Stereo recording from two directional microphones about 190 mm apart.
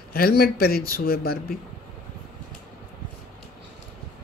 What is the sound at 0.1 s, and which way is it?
Speech, 50° left (ahead or behind).